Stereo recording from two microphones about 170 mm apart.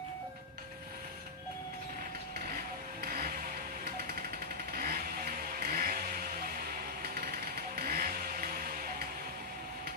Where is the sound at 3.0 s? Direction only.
60° right (ahead or behind).